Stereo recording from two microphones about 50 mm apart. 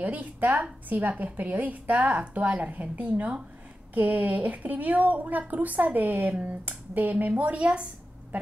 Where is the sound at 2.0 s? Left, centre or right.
Centre.